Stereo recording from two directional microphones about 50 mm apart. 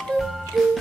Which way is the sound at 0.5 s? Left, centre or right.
Centre.